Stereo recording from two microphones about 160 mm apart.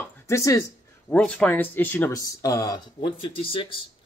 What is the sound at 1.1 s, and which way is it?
Speech, 10° left (ahead or behind).